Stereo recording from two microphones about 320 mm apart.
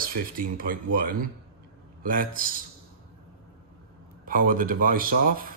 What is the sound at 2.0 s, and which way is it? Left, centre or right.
Speech, right.